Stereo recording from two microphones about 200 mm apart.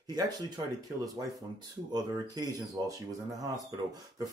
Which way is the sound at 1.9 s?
20° right (ahead or behind).